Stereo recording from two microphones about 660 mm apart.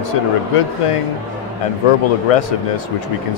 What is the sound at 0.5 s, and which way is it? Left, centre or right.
Speech, left.